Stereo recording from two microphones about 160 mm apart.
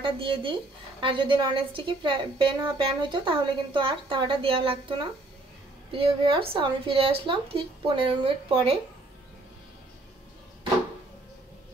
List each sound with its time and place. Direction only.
0.0 s a woman's voice: 30° right (ahead or behind)